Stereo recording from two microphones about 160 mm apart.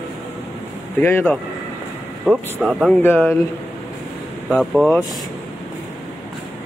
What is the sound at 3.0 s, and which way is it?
Speech, 15° left (ahead or behind).